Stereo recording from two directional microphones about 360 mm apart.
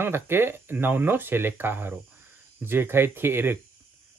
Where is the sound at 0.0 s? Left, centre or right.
Centre.